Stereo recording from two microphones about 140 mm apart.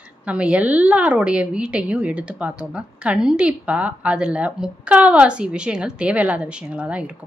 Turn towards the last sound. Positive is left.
turn(degrees=-10)  # may be behind; listen again after turning